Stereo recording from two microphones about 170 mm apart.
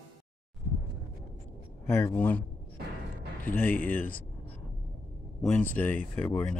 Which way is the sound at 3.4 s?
10° left (ahead or behind).